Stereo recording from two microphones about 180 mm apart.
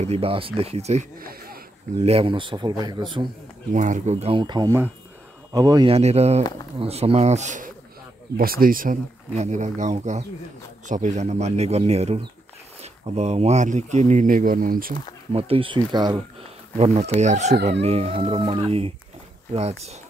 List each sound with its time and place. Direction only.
0.0 s speech: 35° right (ahead or behind)
1.2 s a sound: 55° right (ahead or behind)
2.0 s speech: 35° right (ahead or behind)
3.7 s speech: 45° right (ahead or behind); by 5.9 s 20° right (ahead or behind)
5.9 s speech: 35° right (ahead or behind)
8.4 s speech: 55° right (ahead or behind)
15.3 s speech: 30° right (ahead or behind)
16.7 s speech: 35° right (ahead or behind)